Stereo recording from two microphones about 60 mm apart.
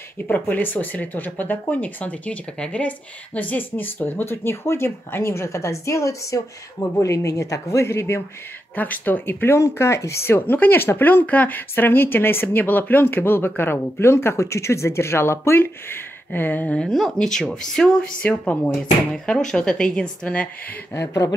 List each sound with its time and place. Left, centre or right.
0.3 s speech: left
8.7 s speech: left
9.6 s speech: left
16.7 s speech: centre
20.9 s speech: left